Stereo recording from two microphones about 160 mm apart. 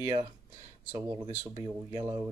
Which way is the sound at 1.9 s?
25° right (ahead or behind).